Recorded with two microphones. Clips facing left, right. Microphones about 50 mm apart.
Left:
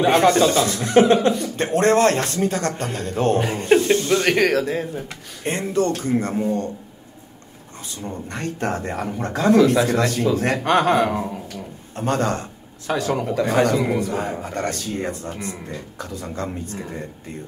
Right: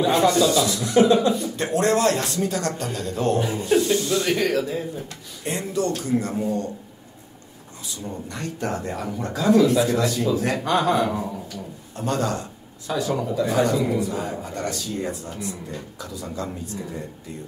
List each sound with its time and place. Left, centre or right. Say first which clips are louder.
0.0 s speech: left 3 dB; left
1.6 s speech: left 4 dB; left
7.9 s speech: left 2 dB; left